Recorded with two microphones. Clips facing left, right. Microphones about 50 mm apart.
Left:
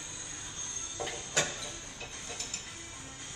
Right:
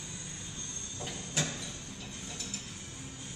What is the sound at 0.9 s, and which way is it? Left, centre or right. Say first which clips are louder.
Train: left 4 dB; left.